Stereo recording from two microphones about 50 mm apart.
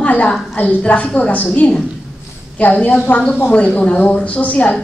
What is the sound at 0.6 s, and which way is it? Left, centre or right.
A woman's voice, left.